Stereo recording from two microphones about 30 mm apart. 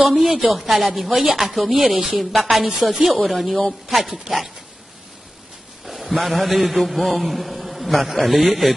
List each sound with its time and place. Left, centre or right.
0.0 s a man's voice: centre
3.2 s a man's voice: centre
4.3 s dog: right
5.9 s a sound: centre
6.4 s a man's voice: centre